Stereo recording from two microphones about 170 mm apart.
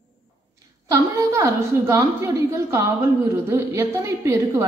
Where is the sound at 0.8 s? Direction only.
20° right (ahead or behind).